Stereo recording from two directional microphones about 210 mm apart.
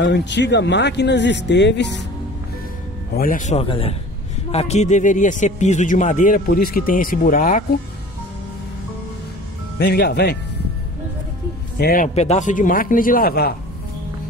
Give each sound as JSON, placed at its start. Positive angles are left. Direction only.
{"t": 0.0, "sound": "speech", "side_deg": 55}
{"t": 3.2, "sound": "speech", "side_deg": 40}
{"t": 9.8, "sound": "speech", "side_deg": 50}
{"t": 11.8, "sound": "speech", "side_deg": 40}